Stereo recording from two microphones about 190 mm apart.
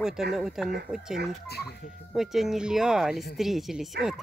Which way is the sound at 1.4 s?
55° left (ahead or behind).